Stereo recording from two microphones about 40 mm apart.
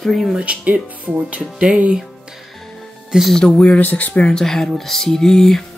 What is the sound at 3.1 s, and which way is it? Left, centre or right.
Speech, centre.